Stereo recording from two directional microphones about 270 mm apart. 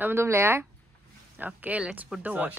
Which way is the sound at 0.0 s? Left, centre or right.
Centre.